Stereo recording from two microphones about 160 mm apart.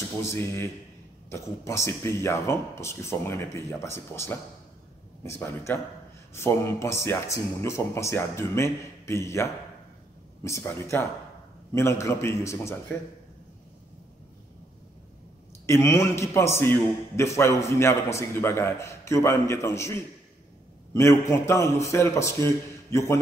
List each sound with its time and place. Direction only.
0.2 s speech: 15° left (ahead or behind)
15.6 s speech: 20° left (ahead or behind)